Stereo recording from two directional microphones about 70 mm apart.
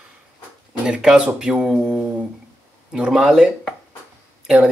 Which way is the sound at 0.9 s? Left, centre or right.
Centre.